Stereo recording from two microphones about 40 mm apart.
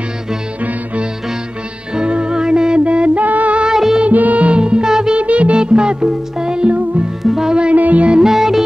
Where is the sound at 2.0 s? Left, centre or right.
Right.